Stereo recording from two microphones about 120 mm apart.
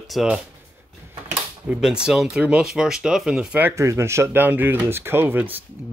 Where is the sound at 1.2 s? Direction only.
10° right (ahead or behind).